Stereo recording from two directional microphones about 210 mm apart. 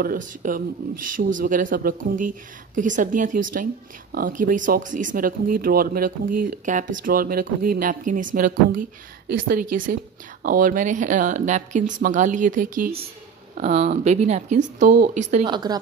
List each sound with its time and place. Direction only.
0.0 s speech: 40° right (ahead or behind)
15.4 s a woman's voice: 20° right (ahead or behind)